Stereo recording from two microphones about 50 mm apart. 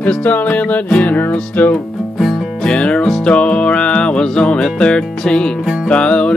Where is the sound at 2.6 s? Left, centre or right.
Left.